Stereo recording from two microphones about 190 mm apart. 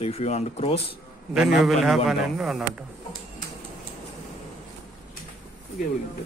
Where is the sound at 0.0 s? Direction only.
35° left (ahead or behind).